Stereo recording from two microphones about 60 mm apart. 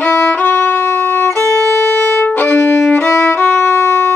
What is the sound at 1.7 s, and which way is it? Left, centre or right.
Music, left.